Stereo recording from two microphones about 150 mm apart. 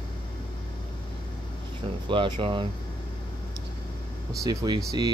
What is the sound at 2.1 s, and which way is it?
Speech, 35° right (ahead or behind).